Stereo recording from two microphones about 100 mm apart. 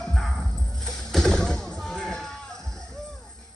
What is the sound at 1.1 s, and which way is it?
Music, 5° left (ahead or behind).